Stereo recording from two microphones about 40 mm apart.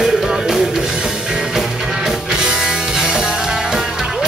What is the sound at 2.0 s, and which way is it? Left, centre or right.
Music, centre.